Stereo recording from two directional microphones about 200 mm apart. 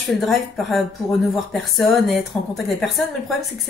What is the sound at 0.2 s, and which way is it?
A woman's voice, centre (ahead or behind).